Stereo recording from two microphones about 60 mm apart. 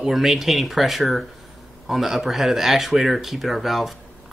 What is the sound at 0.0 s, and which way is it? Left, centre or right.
Speech, centre.